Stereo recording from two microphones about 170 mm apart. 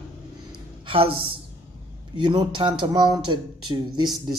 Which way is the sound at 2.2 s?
25° right (ahead or behind).